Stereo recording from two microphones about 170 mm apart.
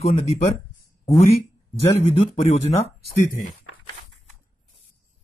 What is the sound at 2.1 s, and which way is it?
Speech, 35° left (ahead or behind).